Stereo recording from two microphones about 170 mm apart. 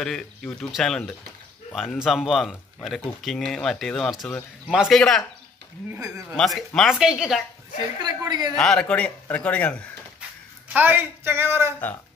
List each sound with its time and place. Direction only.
0.0 s speech: 5° left (ahead or behind)
5.9 s a woman's voice: 20° right (ahead or behind)
6.3 s speech: centre (ahead or behind)
8.0 s a woman's voice: 25° right (ahead or behind)
8.5 s a man's voice: 5° left (ahead or behind)
10.7 s speech: 10° right (ahead or behind)